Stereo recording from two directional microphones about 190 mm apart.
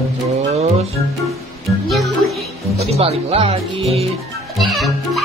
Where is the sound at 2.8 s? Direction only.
35° right (ahead or behind).